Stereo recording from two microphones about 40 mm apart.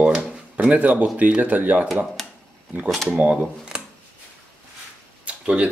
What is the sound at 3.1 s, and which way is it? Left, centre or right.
Speech, right.